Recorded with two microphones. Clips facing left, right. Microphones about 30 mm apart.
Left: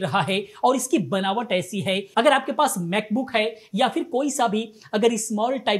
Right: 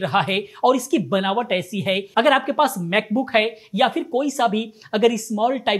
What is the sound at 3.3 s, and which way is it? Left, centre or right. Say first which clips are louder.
Speech: right 4 dB; centre.